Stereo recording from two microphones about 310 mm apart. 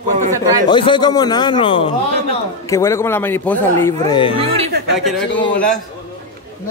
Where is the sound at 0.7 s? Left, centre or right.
Centre.